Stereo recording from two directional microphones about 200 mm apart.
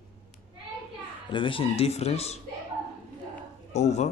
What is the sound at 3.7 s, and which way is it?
Speech, 35° left (ahead or behind).